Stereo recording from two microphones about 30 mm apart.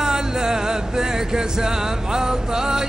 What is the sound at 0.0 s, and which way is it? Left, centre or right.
Music, right.